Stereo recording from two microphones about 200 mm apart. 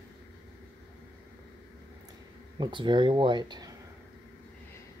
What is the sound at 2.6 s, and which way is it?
Speech, 25° right (ahead or behind).